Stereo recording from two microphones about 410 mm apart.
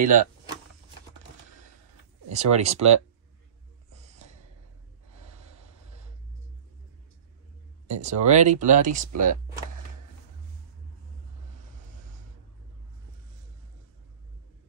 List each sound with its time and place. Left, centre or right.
0.0 s speech: centre
2.2 s speech: centre
7.9 s speech: centre